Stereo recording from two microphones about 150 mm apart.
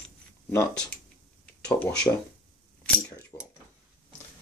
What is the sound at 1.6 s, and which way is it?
Speech, 5° left (ahead or behind).